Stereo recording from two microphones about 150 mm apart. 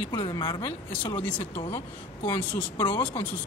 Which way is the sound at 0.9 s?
15° left (ahead or behind).